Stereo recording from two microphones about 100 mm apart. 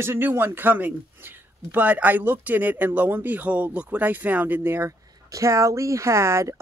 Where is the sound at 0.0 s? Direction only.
20° right (ahead or behind).